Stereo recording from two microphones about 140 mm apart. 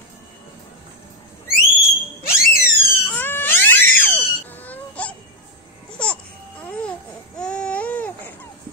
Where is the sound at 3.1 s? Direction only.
15° left (ahead or behind).